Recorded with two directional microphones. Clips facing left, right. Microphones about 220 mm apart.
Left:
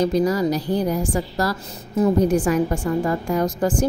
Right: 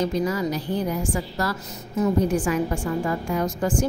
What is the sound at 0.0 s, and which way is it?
A woman's voice, 35° left (ahead or behind).